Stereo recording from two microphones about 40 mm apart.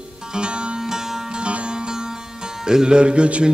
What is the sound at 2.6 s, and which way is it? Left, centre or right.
Music, centre.